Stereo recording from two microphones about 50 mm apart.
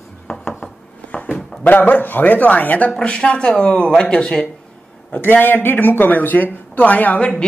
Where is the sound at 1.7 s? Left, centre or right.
Left; by 4.4 s centre.